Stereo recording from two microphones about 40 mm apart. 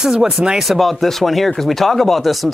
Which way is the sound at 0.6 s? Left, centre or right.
Centre.